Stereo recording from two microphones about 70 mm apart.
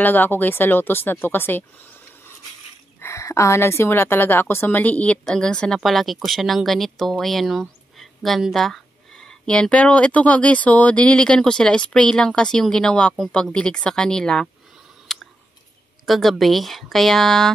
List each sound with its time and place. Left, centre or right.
0.0 s speech: left
3.0 s a woman's voice: left; by 14.5 s centre
15.1 s a sound: centre
16.1 s speech: centre